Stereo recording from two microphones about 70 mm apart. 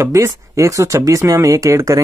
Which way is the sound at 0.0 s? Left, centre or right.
Right.